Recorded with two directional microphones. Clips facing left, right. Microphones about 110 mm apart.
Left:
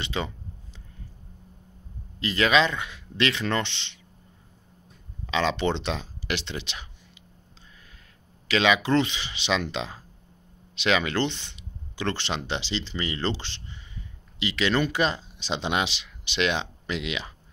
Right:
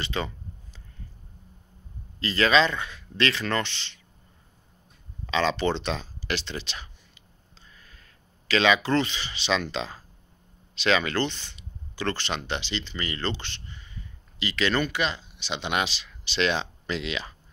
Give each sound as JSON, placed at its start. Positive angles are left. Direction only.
{"t": 0.0, "sound": "speech", "side_deg": 15}
{"t": 2.1, "sound": "speech", "side_deg": 15}
{"t": 5.2, "sound": "speech", "side_deg": 10}
{"t": 8.5, "sound": "speech", "side_deg": 15}
{"t": 14.9, "sound": "speech", "side_deg": 35}